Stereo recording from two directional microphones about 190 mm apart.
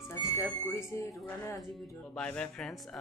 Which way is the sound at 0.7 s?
15° left (ahead or behind).